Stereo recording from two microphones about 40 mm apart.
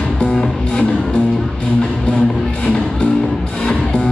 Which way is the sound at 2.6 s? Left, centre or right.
Left.